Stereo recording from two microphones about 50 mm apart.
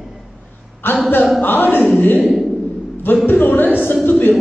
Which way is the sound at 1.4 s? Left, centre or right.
Left.